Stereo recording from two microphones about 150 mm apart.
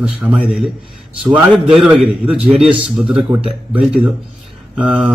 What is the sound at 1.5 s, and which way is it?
A man's voice, 5° right (ahead or behind).